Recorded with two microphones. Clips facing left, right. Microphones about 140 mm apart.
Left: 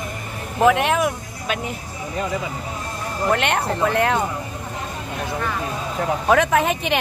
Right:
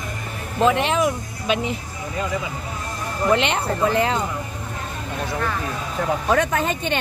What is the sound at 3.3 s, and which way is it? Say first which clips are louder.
Speech: right 1 dB; 55° left (ahead or behind).